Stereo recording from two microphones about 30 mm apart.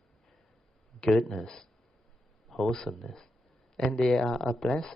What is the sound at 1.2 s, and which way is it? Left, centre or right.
Speech, centre.